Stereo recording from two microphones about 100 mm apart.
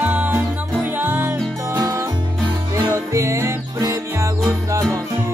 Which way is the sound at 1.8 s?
40° right (ahead or behind).